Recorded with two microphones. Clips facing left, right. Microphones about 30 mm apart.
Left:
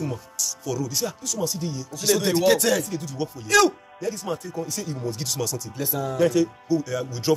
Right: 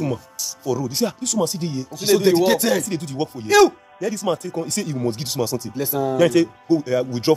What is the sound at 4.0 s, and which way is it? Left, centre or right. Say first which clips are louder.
Speech: right 6 dB; right.